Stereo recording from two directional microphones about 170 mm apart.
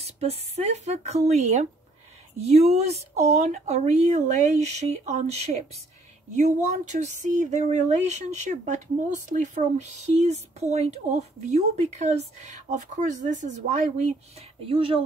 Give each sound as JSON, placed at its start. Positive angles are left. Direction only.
{"t": 0.0, "sound": "speech", "side_deg": -40}